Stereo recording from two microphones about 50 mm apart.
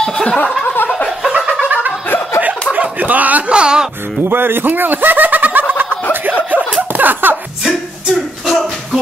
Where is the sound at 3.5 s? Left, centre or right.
Centre.